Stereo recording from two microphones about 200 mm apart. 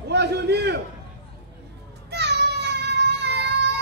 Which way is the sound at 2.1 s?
55° right (ahead or behind).